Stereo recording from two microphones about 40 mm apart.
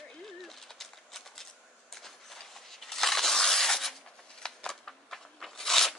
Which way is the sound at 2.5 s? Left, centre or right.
Centre.